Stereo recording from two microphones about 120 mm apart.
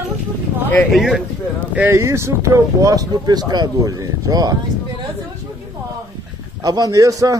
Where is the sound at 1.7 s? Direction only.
20° right (ahead or behind).